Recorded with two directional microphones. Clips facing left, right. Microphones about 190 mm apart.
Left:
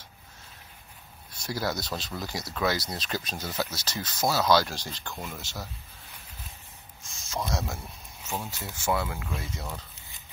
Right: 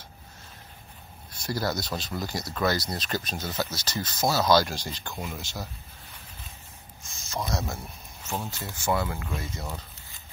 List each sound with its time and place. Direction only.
1.4 s speech: 5° left (ahead or behind)
7.2 s speech: centre (ahead or behind)